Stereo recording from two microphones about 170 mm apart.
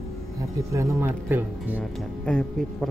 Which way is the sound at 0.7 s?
15° right (ahead or behind).